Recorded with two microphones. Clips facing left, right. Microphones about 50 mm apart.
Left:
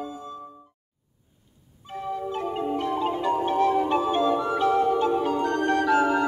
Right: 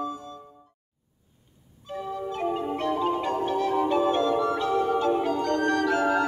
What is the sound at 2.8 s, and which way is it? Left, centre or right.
Music, left.